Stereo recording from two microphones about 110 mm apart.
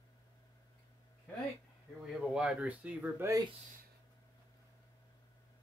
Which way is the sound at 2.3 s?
10° right (ahead or behind).